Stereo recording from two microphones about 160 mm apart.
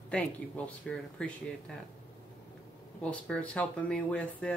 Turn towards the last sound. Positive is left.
turn(degrees=10)  # may be behind; listen again after turning